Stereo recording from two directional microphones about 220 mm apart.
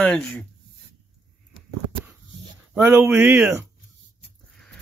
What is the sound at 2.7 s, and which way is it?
Speech, 10° right (ahead or behind).